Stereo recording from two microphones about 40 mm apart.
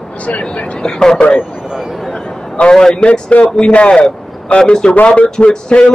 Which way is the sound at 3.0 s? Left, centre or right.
Left.